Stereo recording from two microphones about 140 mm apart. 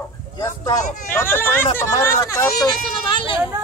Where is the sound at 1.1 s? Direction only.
15° left (ahead or behind); by 3.4 s 35° left (ahead or behind).